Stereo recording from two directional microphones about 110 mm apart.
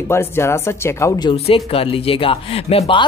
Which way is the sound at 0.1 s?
25° left (ahead or behind).